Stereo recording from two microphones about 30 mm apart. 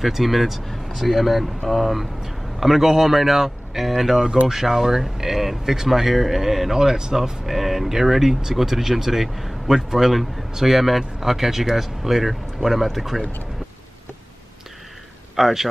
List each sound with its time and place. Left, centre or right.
0.0 s speech: centre
7.0 s speech: centre
7.4 s speech: centre
15.3 s speech: centre